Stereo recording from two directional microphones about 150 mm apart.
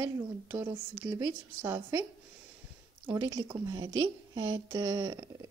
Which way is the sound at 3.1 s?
20° right (ahead or behind).